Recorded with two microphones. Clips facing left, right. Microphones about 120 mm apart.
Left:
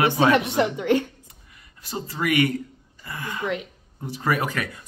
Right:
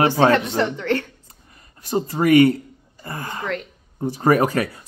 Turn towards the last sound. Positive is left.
turn(degrees=-40)  # may be behind; listen again after turning